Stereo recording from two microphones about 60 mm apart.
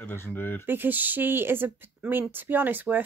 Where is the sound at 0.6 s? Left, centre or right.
Right.